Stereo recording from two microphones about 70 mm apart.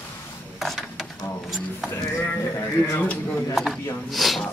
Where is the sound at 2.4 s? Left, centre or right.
Left.